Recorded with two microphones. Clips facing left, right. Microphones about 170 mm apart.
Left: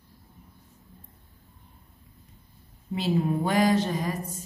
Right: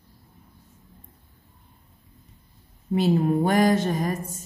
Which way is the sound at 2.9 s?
50° right (ahead or behind).